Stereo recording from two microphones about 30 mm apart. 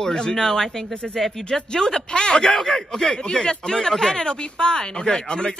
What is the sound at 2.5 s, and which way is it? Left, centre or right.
Speech, centre.